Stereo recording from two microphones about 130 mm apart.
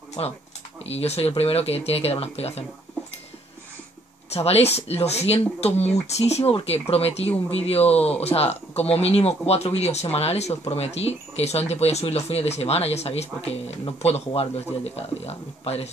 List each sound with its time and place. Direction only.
0.2 s speech: 45° left (ahead or behind)
4.3 s speech: 50° left (ahead or behind)